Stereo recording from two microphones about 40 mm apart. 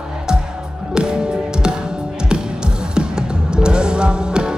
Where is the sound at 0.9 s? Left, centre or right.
Centre.